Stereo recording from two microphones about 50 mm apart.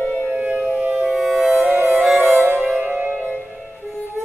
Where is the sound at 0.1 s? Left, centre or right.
Right.